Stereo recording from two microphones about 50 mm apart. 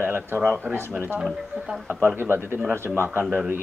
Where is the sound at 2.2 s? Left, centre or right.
Right.